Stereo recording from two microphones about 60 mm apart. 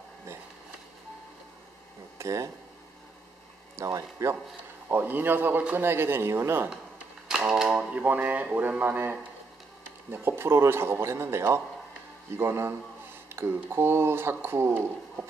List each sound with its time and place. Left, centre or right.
2.1 s speech: right
3.7 s speech: right
4.8 s speech: right
7.7 s speech: right